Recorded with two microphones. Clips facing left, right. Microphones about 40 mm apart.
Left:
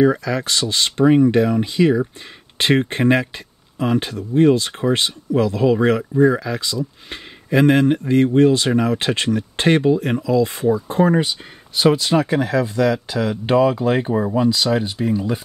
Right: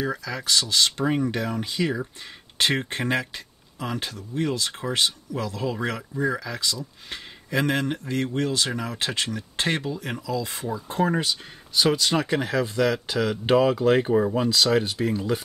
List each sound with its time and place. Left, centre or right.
0.0 s speech: left
3.7 s speech: left; by 12.4 s centre
12.4 s speech: centre